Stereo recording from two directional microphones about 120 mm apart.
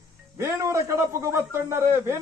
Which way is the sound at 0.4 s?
25° right (ahead or behind).